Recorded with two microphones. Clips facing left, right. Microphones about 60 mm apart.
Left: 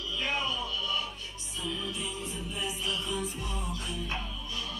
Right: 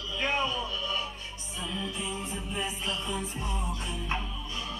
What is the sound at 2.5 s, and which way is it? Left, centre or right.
Music, right.